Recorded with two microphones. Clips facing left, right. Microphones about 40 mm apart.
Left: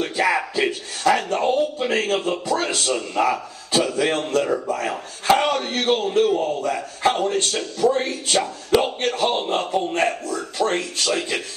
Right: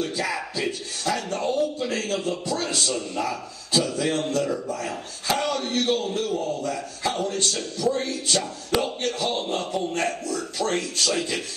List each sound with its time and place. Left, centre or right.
0.0 s speech: left